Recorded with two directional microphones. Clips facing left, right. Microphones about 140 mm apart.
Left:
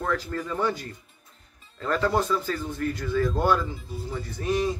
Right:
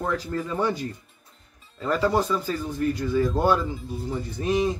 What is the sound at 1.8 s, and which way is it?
Speech, 10° right (ahead or behind).